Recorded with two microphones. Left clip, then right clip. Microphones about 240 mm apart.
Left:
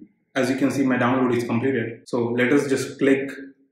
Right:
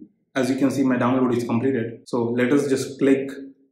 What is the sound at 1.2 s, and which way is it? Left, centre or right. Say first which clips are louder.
A man's voice: even; centre.